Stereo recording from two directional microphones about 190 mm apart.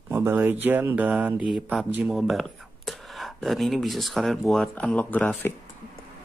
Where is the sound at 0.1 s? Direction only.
10° right (ahead or behind); by 5.5 s 10° left (ahead or behind).